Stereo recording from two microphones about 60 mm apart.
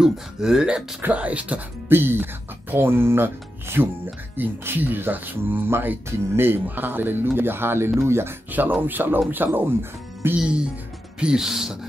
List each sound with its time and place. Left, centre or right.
0.0 s speech: centre
1.0 s speech: right
1.9 s speech: right
8.5 s speech: right
11.1 s speech: centre